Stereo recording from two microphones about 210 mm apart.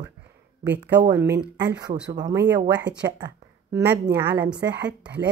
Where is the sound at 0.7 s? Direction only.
55° right (ahead or behind).